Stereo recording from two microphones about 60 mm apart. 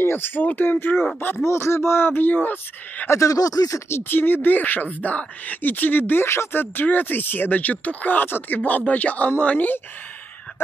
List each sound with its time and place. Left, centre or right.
0.0 s speech: left
3.1 s speech: left
3.9 s speech: left
6.2 s speech: left